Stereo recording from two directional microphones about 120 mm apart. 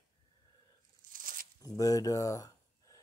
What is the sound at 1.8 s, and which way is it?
Speech, 30° left (ahead or behind).